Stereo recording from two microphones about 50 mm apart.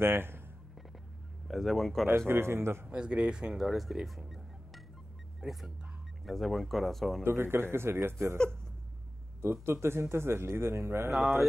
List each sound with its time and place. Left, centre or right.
0.0 s a man's voice: right
1.5 s speech: centre
2.0 s a man's voice: right
2.9 s speech: right
3.5 s speech: centre
5.4 s speech: centre
7.2 s a man's voice: right
9.4 s a man's voice: right
11.1 s speech: centre